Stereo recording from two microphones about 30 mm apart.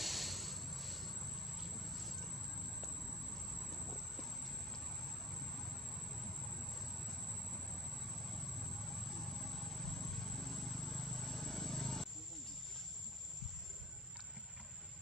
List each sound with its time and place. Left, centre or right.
0.0 s vehicle: centre
5.3 s vehicle: centre